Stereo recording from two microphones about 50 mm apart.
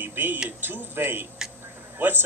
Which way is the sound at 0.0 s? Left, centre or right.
Right.